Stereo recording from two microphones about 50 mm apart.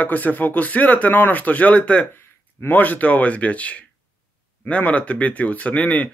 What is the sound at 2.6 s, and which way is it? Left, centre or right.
Speech, left.